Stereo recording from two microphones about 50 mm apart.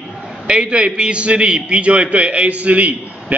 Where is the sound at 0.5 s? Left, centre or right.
Right.